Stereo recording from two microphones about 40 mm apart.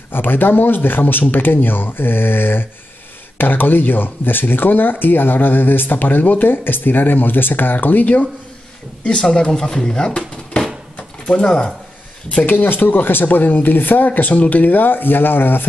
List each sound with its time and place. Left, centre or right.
0.1 s speech: left
9.5 s speech: centre; by 11.5 s left
12.4 s speech: left